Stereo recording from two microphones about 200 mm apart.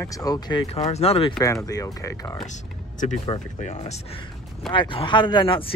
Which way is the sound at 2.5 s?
35° left (ahead or behind).